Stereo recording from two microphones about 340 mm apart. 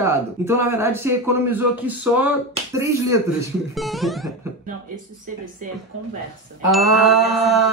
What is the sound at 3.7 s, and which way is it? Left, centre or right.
Music, centre.